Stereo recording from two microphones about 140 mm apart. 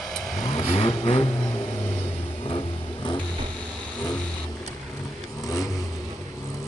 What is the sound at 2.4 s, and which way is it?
Vehicle, 35° left (ahead or behind).